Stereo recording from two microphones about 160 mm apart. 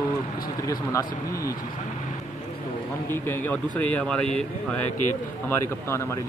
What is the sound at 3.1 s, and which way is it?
A man's voice, 15° left (ahead or behind).